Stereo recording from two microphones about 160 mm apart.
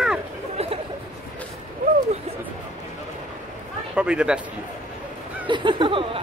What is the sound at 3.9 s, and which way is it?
Speech, 5° right (ahead or behind).